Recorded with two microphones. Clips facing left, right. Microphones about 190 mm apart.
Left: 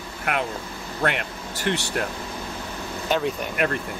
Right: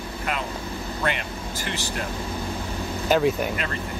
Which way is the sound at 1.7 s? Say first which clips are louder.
Left 7 dB; 60° left (ahead or behind).